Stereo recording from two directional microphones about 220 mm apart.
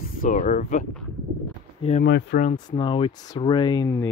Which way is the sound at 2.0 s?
50° left (ahead or behind).